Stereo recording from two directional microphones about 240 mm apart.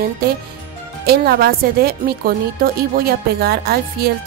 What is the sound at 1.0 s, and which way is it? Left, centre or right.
Speech, right.